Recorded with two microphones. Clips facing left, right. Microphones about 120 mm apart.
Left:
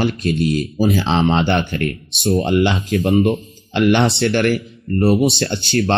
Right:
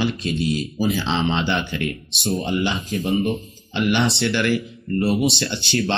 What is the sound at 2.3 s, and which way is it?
Speech, 65° left (ahead or behind).